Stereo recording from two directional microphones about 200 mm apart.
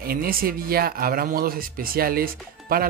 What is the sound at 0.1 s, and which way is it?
Speech, 45° right (ahead or behind).